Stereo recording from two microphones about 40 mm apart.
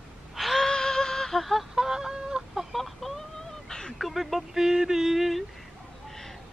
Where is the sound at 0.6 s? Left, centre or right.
Centre.